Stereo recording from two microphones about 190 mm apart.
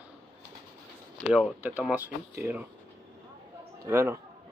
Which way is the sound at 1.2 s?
5° right (ahead or behind).